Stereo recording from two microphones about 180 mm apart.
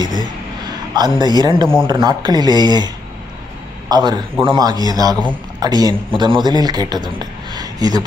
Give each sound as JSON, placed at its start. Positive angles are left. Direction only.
{"t": 0.7, "sound": "a sound", "side_deg": -20}
{"t": 1.2, "sound": "a man's voice", "side_deg": -25}
{"t": 3.9, "sound": "a man's voice", "side_deg": -25}